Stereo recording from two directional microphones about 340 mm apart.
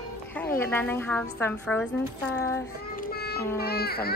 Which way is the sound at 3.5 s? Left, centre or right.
Left.